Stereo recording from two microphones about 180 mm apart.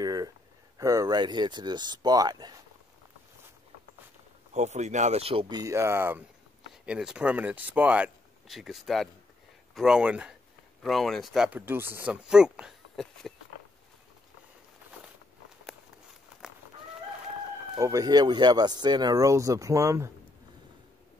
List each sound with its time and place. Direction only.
0.0 s a sound: 20° right (ahead or behind)
0.7 s speech: 20° right (ahead or behind)
4.6 s speech: 40° right (ahead or behind); by 13.3 s centre (ahead or behind)
17.7 s speech: 20° right (ahead or behind)